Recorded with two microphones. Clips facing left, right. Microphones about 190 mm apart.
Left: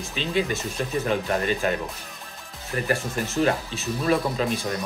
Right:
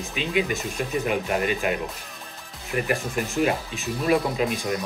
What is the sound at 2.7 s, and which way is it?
Speech, 15° right (ahead or behind).